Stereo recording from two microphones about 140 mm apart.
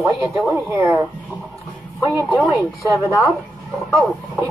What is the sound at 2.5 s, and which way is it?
Speech, 20° right (ahead or behind).